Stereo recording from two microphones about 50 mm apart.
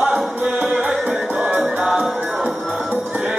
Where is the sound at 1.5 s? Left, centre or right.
Centre.